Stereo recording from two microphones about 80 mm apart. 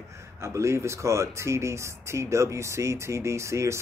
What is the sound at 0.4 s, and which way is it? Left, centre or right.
Speech, right.